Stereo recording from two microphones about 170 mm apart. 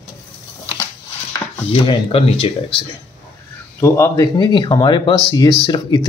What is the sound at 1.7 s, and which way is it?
Speech, 30° left (ahead or behind).